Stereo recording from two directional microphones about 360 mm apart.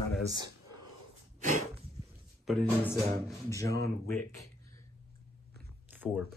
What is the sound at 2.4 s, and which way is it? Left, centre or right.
Speech, centre.